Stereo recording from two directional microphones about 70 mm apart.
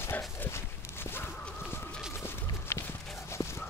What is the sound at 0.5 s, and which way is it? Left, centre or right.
Walk, left.